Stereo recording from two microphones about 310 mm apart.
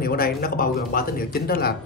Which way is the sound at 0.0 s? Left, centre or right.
Left.